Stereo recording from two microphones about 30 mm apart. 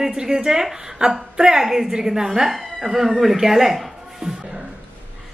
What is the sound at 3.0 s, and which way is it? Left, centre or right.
Speech, centre.